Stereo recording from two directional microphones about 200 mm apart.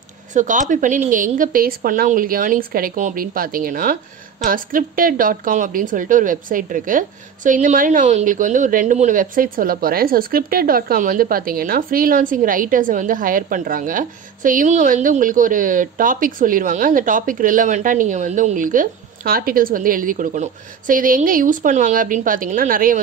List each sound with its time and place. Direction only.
0.3 s a woman's voice: 40° right (ahead or behind)